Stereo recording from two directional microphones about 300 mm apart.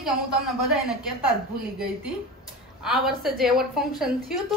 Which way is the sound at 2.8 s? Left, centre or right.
Centre.